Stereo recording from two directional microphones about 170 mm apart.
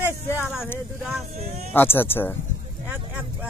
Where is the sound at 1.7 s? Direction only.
10° left (ahead or behind).